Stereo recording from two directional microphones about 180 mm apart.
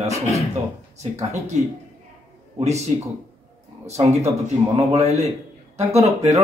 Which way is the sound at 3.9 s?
40° right (ahead or behind).